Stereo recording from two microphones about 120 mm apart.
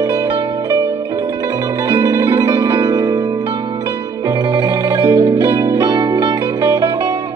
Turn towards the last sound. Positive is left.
turn(degrees=-30)  # may be behind; listen again after turning